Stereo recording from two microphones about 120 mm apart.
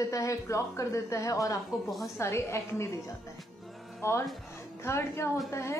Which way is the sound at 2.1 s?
25° left (ahead or behind).